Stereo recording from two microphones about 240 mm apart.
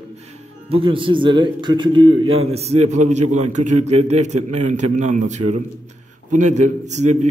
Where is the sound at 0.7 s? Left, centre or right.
Right.